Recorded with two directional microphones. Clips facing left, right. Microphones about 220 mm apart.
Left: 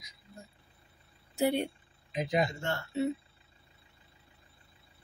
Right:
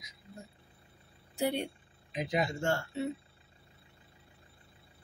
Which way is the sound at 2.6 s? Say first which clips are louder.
Right 4 dB; 45° right (ahead or behind).